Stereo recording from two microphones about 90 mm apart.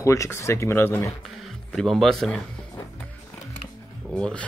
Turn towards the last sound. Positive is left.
turn(degrees=10)  # may be behind; listen again after turning